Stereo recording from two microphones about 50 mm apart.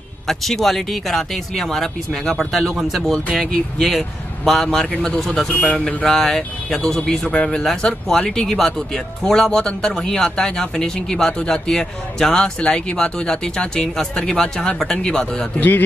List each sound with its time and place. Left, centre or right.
0.3 s speech: centre
3.3 s speech: centre
4.9 s speech: left
5.2 s speech: centre
5.5 s speech: left
6.0 s speech: centre